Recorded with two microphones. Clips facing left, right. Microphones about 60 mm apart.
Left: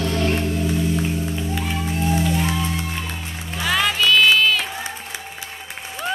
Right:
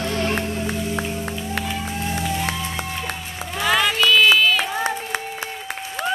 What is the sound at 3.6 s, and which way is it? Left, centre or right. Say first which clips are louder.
Music: right 1 dB; centre.